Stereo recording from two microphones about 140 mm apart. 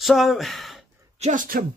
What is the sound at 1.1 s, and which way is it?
Speech, 55° right (ahead or behind).